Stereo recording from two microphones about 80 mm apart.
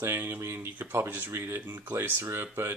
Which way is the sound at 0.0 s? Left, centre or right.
Right.